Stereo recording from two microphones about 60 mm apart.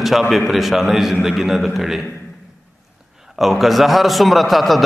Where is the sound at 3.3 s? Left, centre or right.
Centre.